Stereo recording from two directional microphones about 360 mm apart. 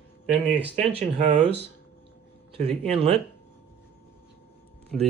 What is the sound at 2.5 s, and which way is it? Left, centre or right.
Speech, centre.